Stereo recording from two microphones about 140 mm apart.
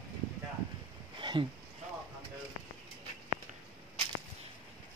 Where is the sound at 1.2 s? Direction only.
35° right (ahead or behind).